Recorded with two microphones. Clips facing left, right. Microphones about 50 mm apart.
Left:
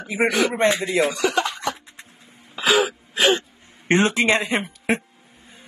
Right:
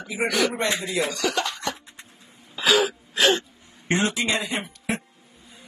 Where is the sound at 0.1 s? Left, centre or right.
Left.